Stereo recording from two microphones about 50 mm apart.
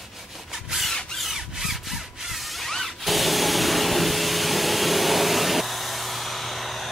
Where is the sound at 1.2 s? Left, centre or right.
Centre.